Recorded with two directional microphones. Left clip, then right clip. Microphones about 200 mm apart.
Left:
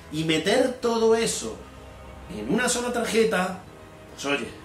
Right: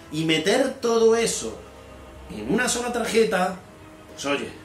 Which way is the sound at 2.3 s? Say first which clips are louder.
Right 1 dB; 10° right (ahead or behind).